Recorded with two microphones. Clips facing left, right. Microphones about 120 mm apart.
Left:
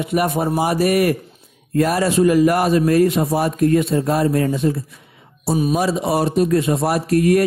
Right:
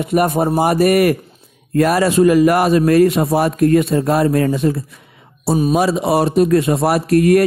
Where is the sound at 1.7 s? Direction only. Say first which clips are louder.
Right 3 dB; 70° right (ahead or behind).